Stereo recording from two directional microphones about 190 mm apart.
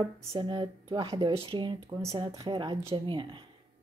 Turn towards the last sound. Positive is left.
turn(degrees=-25)  # may be behind; listen again after turning